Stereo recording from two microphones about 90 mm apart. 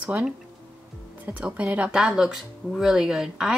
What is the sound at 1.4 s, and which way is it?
Speech, 15° right (ahead or behind).